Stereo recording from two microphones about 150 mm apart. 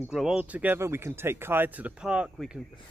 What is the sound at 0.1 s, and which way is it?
Speech, 5° right (ahead or behind).